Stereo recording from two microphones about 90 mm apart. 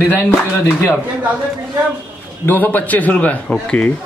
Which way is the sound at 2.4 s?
20° left (ahead or behind).